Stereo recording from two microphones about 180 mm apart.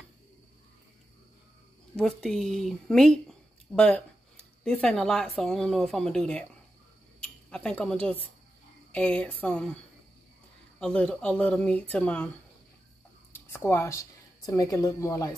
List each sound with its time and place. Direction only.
2.0 s speech: 5° left (ahead or behind)
10.8 s speech: 5° left (ahead or behind)
13.7 s speech: 15° left (ahead or behind)